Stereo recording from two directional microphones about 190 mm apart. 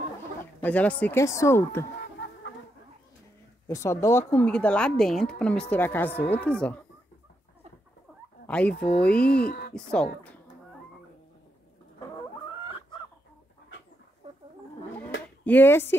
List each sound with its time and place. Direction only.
0.6 s speech: 5° left (ahead or behind)
3.6 s speech: 15° left (ahead or behind)
8.5 s speech: 5° left (ahead or behind)
8.7 s speech: 60° left (ahead or behind)
9.8 s speech: 5° left (ahead or behind)
12.6 s chicken: 25° left (ahead or behind)
15.4 s speech: 10° left (ahead or behind)